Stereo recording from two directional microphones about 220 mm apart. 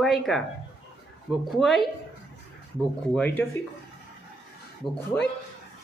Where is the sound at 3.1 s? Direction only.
5° left (ahead or behind).